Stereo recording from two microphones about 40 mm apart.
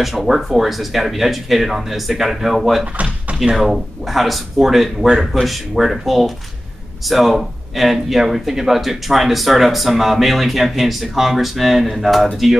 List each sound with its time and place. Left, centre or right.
0.0 s speech: centre